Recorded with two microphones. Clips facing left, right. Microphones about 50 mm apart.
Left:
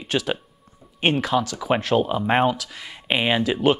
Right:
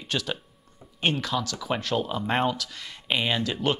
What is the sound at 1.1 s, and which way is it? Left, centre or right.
Speech, left.